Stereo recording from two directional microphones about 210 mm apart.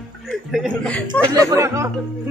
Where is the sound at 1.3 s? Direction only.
15° right (ahead or behind).